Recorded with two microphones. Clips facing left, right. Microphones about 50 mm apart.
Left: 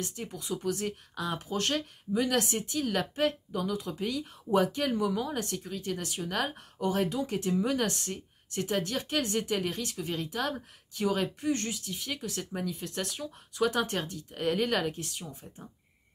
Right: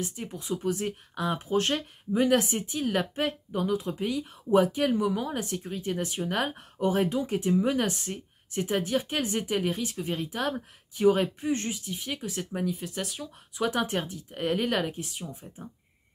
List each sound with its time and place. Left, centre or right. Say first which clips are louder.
0.0 s speech: right 2 dB; centre